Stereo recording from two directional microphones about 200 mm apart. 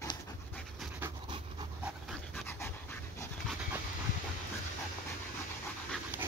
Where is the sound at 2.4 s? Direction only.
10° left (ahead or behind).